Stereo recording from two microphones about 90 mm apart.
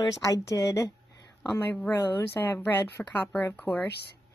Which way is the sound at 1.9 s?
25° left (ahead or behind).